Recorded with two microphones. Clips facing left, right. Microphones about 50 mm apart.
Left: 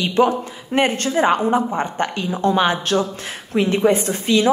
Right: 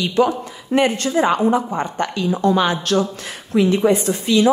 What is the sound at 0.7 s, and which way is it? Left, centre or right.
A woman's voice, left.